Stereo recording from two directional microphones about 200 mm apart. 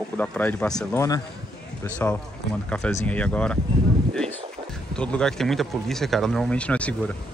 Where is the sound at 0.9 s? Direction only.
15° left (ahead or behind).